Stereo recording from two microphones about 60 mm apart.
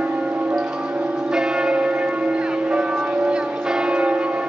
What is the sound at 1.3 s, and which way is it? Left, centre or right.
Church bell, centre.